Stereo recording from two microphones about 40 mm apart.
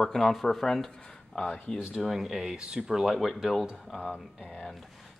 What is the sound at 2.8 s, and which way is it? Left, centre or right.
Speech, centre.